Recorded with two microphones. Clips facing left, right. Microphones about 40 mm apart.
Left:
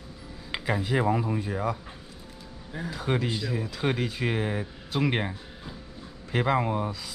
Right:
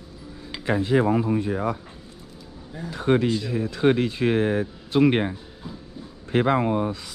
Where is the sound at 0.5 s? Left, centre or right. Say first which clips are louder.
Left 3 dB; left.